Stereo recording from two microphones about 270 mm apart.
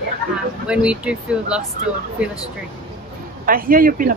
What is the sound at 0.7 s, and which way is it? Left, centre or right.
Speech, centre.